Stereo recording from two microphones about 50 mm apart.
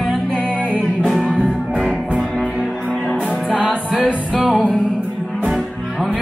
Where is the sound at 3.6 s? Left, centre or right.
Centre.